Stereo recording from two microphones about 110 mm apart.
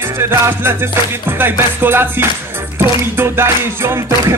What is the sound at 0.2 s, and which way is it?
Music, 20° right (ahead or behind).